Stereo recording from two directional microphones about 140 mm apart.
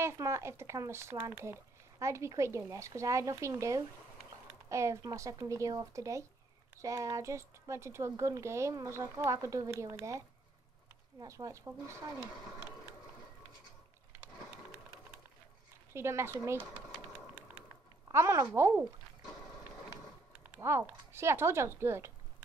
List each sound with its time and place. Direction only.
0.0 s speech: 20° right (ahead or behind)
15.9 s speech: 20° right (ahead or behind)
18.1 s speech: 20° right (ahead or behind)
20.6 s speech: 20° right (ahead or behind)